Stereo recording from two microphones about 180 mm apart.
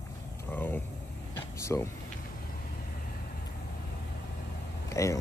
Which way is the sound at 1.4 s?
15° left (ahead or behind).